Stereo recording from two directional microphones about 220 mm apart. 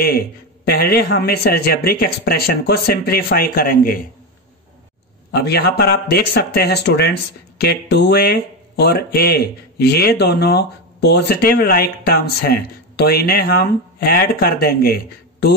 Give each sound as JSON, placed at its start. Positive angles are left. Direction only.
{"t": 0.7, "sound": "speech", "side_deg": 45}
{"t": 5.3, "sound": "speech", "side_deg": 45}